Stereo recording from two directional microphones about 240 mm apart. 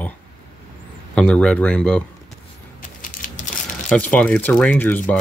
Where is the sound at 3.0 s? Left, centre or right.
Left.